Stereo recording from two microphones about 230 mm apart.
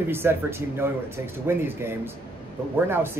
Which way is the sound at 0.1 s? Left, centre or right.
Centre.